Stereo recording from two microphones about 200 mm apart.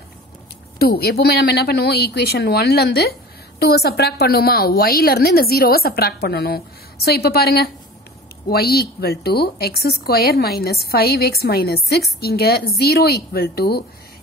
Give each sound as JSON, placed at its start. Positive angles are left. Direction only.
{"t": 0.7, "sound": "a woman's voice", "side_deg": 50}